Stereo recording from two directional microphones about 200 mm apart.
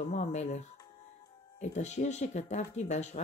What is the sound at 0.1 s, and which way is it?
Speech, 35° left (ahead or behind).